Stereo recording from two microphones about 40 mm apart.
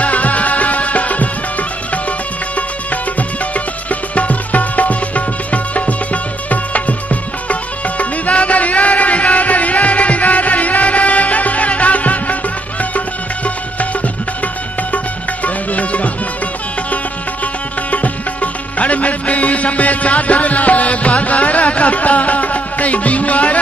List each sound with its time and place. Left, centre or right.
0.0 s music: left
15.4 s music: left
17.9 s music: left